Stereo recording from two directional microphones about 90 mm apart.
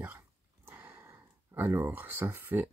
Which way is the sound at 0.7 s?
20° right (ahead or behind).